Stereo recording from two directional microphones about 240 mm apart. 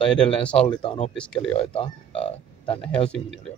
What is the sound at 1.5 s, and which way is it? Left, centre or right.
Speech, left.